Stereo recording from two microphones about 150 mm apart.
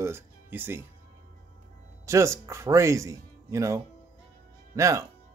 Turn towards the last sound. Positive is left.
turn(degrees=-20)  # may be behind; listen again after turning